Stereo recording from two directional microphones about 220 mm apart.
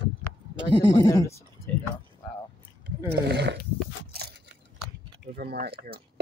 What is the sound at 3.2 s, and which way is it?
Speech, 50° right (ahead or behind).